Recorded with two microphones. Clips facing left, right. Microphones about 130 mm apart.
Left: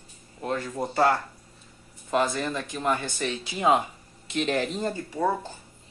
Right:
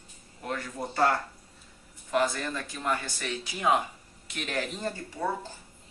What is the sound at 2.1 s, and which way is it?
Speech, 20° left (ahead or behind).